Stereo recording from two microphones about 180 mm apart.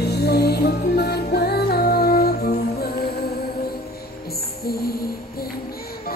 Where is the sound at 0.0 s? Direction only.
65° left (ahead or behind).